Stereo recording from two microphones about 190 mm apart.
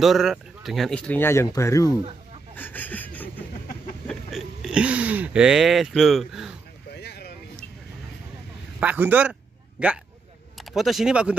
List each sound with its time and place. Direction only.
0.0 s speech: centre (ahead or behind); by 2.0 s 15° left (ahead or behind)
2.5 s a sound: 10° left (ahead or behind)
4.1 s speech: centre (ahead or behind)
6.9 s boat: 55° left (ahead or behind)
8.7 s a sound: 10° right (ahead or behind)
10.6 s speech: centre (ahead or behind)